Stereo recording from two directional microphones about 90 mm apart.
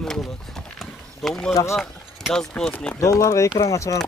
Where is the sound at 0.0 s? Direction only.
5° left (ahead or behind).